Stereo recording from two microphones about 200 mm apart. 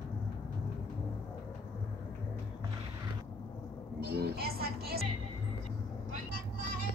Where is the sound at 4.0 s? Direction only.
50° right (ahead or behind).